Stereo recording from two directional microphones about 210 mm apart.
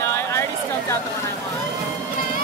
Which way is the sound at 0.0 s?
10° left (ahead or behind).